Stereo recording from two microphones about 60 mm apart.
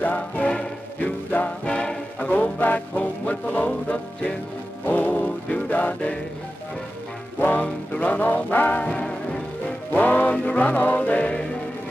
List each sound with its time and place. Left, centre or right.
0.0 s music: left
7.3 s music: left
8.8 s music: centre
9.9 s music: left